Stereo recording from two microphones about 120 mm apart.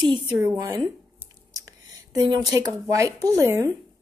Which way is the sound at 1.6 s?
35° right (ahead or behind).